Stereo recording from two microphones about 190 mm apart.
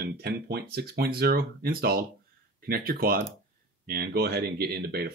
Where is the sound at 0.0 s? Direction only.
55° right (ahead or behind).